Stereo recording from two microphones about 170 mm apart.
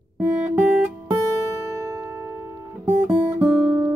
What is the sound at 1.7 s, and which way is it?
Music, 20° right (ahead or behind).